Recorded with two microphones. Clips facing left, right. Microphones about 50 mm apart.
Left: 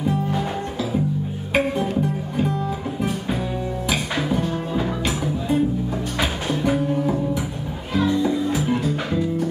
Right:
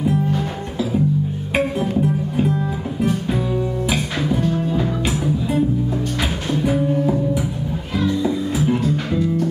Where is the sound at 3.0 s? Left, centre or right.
Centre.